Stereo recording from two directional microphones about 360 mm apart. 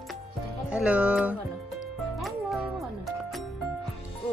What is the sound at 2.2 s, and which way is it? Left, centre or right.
Music, centre.